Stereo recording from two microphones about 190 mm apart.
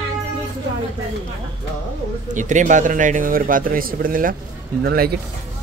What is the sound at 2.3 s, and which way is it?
Speech, 40° right (ahead or behind).